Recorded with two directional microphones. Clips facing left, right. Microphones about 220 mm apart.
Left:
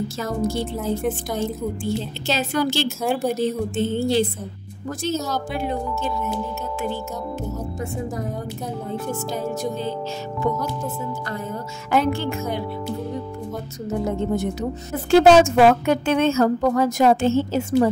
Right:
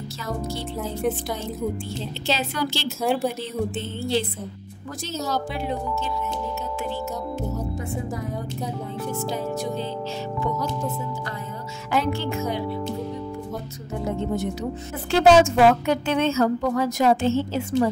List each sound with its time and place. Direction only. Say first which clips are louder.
2.2 s a woman's voice: left 3 dB; 45° left (ahead or behind)
3.0 s a woman's voice: right 5 dB; centre (ahead or behind)
3.3 s a woman's voice: left 4 dB; 45° left (ahead or behind)
5.5 s a woman's voice: left 2 dB; 50° left (ahead or behind)
11.9 s a woman's voice: left 4 dB; 50° left (ahead or behind)
15.0 s a woman's voice: left 3 dB; 55° left (ahead or behind)